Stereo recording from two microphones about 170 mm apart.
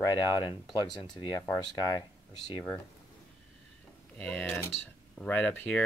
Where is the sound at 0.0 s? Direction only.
25° left (ahead or behind).